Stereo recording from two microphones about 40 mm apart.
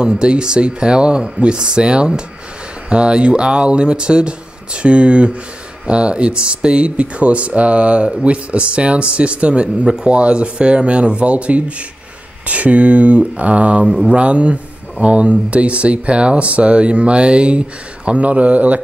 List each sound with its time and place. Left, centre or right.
0.0 s speech: right
9.8 s speech: centre
10.1 s speech: right